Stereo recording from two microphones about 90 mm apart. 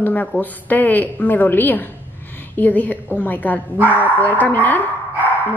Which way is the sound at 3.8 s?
20° right (ahead or behind).